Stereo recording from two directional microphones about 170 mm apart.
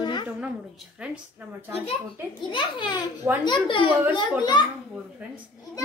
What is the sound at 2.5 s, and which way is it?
A child's voice, 30° left (ahead or behind).